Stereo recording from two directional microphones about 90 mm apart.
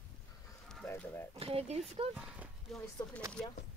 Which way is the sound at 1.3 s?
90° right.